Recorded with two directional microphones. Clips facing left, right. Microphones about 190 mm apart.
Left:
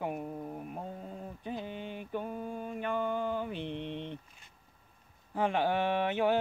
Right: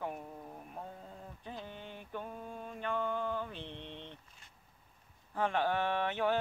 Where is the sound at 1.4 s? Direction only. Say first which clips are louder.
Left 7 dB; 15° left (ahead or behind).